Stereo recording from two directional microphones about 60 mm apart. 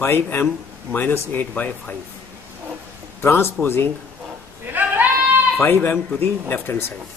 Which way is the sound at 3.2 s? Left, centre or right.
Left.